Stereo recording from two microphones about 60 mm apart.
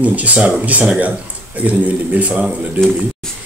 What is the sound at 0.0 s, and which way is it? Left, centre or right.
A man's voice, right.